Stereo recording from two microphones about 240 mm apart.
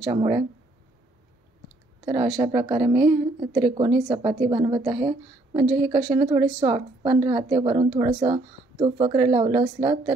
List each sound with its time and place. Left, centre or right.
0.0 s a woman's voice: centre
2.0 s a woman's voice: right